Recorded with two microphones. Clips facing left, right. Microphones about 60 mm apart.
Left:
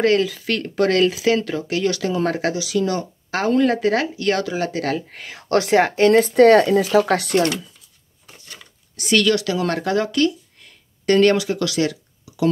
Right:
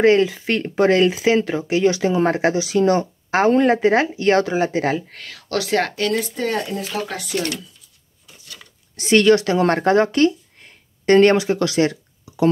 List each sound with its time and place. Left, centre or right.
0.0 s speech: right
4.9 s speech: centre
5.3 s speech: left
5.7 s speech: centre
5.9 s speech: left
6.2 s speech: left
8.9 s speech: right